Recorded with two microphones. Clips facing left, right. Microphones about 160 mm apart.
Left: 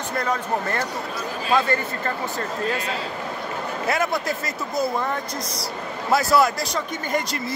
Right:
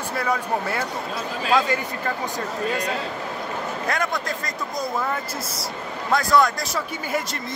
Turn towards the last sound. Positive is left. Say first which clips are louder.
# left 1 dB
turn(degrees=-5)  # may be behind; listen again after turning